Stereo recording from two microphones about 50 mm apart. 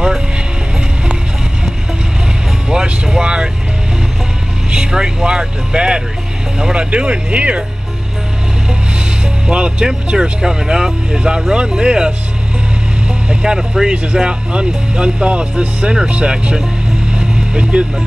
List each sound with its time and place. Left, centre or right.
2.7 s music: centre
4.6 s music: centre
6.6 s speech: right
9.5 s speech: centre
13.3 s speech: centre
17.1 s music: right